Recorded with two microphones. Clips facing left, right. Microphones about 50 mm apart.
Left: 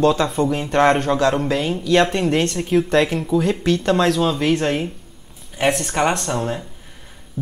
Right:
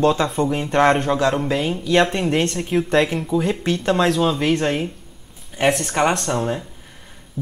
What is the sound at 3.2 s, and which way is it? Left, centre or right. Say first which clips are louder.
Speech: left 2 dB; centre.